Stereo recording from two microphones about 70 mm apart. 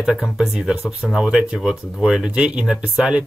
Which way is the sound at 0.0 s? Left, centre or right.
Centre.